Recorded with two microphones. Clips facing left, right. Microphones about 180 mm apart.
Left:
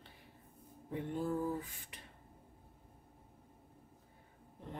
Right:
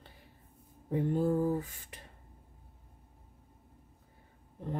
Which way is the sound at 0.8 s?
40° right (ahead or behind).